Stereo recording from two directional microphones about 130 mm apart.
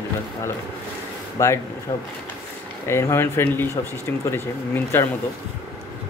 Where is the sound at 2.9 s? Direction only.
20° left (ahead or behind).